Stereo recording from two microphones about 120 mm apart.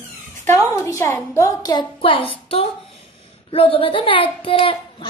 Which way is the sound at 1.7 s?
45° left (ahead or behind).